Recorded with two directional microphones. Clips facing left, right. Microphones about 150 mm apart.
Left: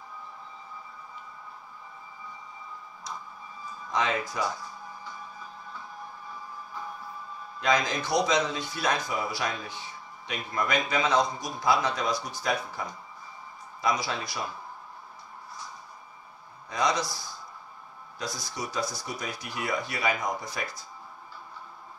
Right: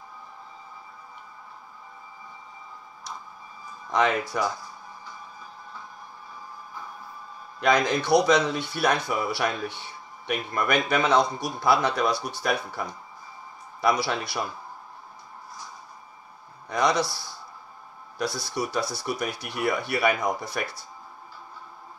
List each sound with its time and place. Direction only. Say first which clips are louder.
3.9 s speech: right 5 dB; 65° right (ahead or behind)
7.6 s speech: right 4 dB; 65° right (ahead or behind)
16.6 s speech: right 4 dB; 65° right (ahead or behind)